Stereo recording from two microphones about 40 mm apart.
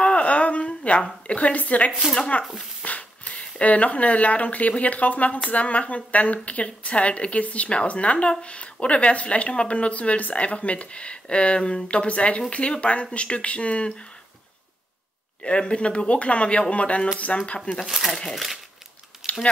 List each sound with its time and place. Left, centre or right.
0.0 s a sound: left
2.3 s speech: left
2.8 s a sound: left
3.6 s speech: left
15.4 s speech: left
17.8 s speech: centre
19.2 s typing: centre